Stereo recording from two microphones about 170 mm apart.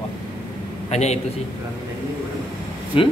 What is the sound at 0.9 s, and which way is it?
Speech, 40° left (ahead or behind).